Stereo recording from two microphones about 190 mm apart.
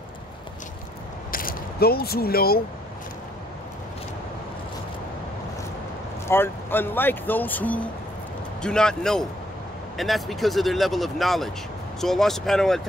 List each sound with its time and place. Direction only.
1.3 s speech: 50° left (ahead or behind)
6.2 s speech: 10° left (ahead or behind)